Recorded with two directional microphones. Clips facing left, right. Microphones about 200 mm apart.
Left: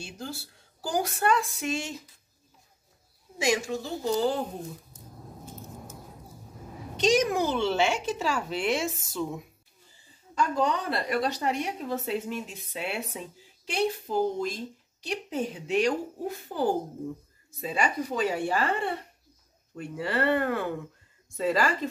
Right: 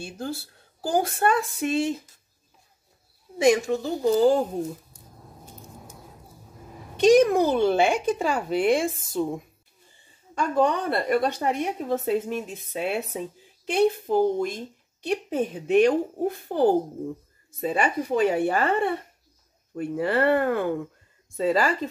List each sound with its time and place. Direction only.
0.0 s speech: 55° right (ahead or behind)
3.3 s speech: 60° right (ahead or behind)
4.9 s a sound: 10° right (ahead or behind)
7.0 s speech: 55° right (ahead or behind)
10.3 s speech: 55° right (ahead or behind)